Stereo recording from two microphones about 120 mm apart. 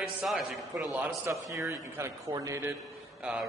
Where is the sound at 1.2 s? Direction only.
25° right (ahead or behind).